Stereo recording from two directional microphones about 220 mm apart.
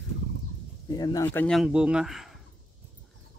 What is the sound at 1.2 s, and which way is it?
Speech, 5° left (ahead or behind).